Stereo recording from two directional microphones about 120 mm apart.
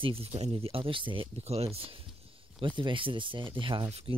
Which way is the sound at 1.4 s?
60° right (ahead or behind).